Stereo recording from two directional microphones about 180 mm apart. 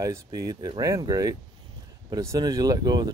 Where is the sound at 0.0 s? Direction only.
20° right (ahead or behind).